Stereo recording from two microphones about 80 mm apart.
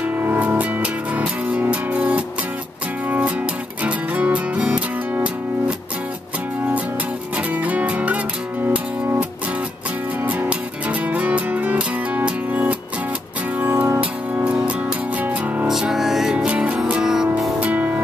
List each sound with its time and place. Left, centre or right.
0.0 s music: right
7.3 s music: centre
10.2 s music: centre
15.6 s music: centre